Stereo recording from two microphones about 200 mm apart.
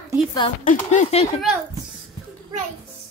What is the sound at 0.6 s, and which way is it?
Speech, 40° left (ahead or behind).